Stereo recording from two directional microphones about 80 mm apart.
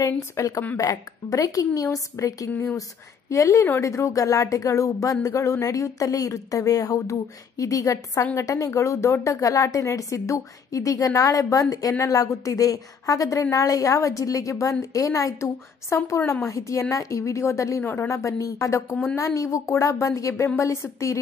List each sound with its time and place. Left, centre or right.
0.0 s a woman's voice: left